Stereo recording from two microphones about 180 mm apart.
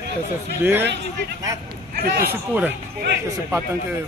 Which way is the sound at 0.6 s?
10° right (ahead or behind).